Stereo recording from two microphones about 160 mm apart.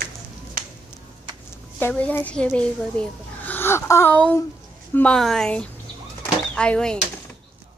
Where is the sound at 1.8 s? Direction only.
10° left (ahead or behind).